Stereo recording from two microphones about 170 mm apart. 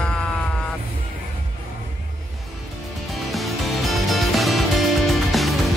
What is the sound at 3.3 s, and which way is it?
Music, centre (ahead or behind).